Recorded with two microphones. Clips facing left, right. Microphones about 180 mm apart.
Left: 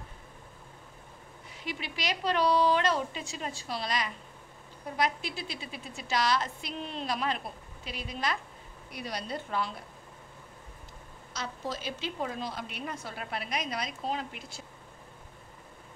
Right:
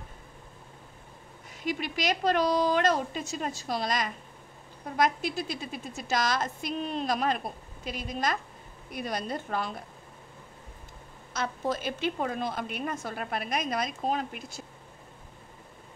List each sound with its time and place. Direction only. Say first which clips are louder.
1.6 s a woman's voice: right 6 dB; 45° right (ahead or behind)
11.3 s a woman's voice: right 6 dB; 55° right (ahead or behind)